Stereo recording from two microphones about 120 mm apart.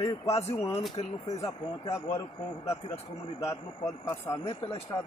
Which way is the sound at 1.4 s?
25° left (ahead or behind).